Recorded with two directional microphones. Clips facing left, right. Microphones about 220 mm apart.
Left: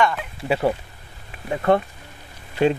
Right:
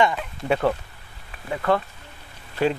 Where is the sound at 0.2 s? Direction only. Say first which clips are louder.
Left 1 dB; 5° left (ahead or behind).